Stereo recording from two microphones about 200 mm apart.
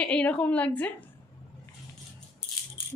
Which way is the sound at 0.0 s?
5° left (ahead or behind).